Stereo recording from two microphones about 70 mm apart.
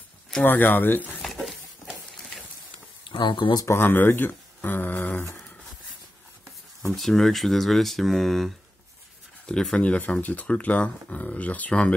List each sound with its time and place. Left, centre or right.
0.4 s speech: left
1.2 s a sound: centre
3.1 s speech: left
3.6 s speech: left
6.8 s speech: centre